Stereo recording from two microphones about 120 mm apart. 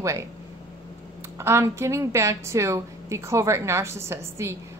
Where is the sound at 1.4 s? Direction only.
20° right (ahead or behind).